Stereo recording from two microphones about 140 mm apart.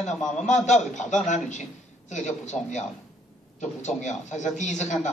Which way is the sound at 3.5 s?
60° left (ahead or behind).